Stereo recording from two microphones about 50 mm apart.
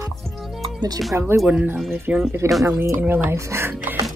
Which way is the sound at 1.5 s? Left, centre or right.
Right.